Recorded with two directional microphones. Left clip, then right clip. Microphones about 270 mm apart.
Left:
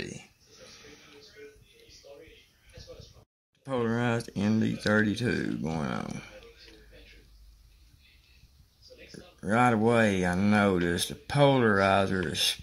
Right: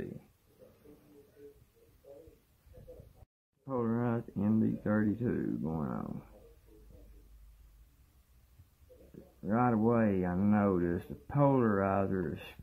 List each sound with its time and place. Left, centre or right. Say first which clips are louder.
3.6 s speech: left 5 dB; left
9.4 s speech: left 6 dB; left